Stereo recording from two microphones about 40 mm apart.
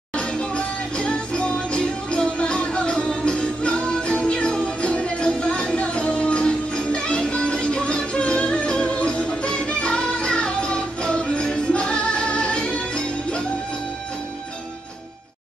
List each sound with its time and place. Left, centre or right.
0.1 s music: left